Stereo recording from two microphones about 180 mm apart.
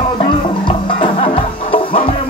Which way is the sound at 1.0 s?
30° left (ahead or behind).